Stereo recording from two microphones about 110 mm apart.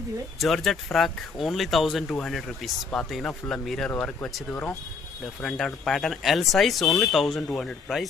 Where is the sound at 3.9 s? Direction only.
15° left (ahead or behind).